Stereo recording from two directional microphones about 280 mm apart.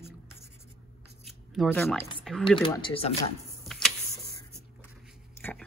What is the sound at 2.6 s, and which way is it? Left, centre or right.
Speech, centre.